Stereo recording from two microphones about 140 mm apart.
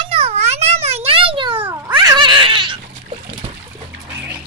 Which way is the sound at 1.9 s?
30° right (ahead or behind).